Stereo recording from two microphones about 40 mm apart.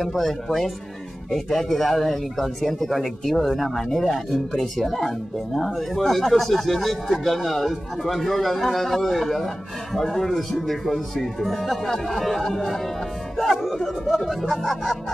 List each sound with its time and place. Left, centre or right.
0.0 s a man's voice: centre